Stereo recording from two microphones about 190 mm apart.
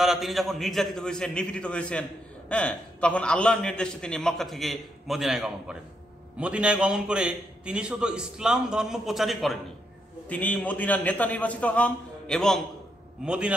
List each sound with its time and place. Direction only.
0.0 s a man's voice: centre (ahead or behind)